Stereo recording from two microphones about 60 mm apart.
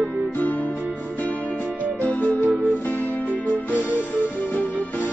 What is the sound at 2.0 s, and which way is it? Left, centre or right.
Music, left.